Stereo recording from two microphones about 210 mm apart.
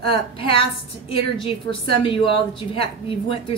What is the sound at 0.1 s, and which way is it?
A woman's voice, 25° left (ahead or behind).